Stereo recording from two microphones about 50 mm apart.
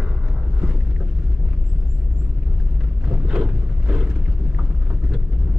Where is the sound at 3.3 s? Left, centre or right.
Centre.